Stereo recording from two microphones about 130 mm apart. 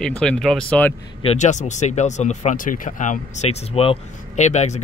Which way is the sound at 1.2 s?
65° left (ahead or behind).